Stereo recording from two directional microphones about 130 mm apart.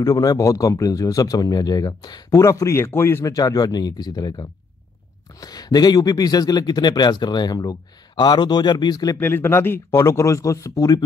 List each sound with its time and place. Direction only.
0.0 s speech: 30° left (ahead or behind)
9.2 s speech: 20° left (ahead or behind)